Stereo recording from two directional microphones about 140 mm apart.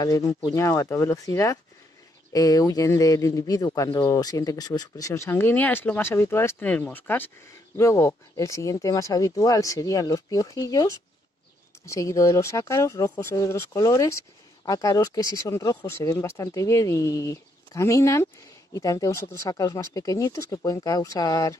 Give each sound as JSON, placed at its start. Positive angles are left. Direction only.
{"t": 0.0, "sound": "speech", "side_deg": 25}